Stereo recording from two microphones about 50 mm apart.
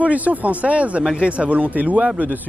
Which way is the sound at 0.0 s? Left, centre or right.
Right.